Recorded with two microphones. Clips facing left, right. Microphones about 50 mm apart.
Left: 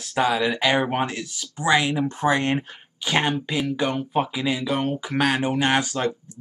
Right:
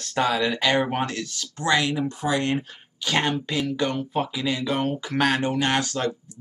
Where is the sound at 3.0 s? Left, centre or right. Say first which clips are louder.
Left 1 dB; centre.